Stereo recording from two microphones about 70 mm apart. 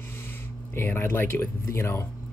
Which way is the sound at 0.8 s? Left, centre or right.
Left.